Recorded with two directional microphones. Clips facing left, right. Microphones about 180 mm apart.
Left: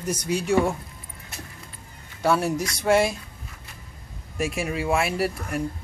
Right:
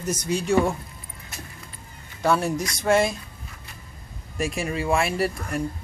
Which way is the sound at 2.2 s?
5° left (ahead or behind).